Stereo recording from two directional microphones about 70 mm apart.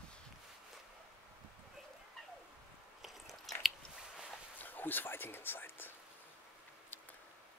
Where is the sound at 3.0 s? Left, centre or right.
Centre.